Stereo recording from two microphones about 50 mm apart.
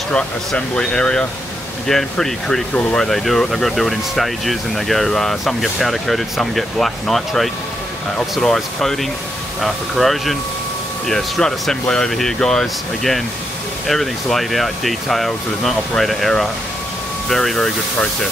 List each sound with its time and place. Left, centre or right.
0.6 s speech: centre
1.9 s speech: centre